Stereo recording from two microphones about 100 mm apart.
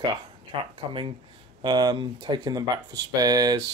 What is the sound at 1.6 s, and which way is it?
Speech, 45° right (ahead or behind).